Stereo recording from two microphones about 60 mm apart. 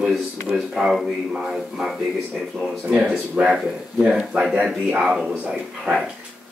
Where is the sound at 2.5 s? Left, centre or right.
Centre.